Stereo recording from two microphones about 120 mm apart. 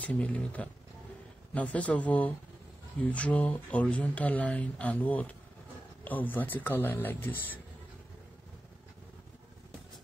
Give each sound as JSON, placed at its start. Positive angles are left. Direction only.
{"t": 0.0, "sound": "speech", "side_deg": 10}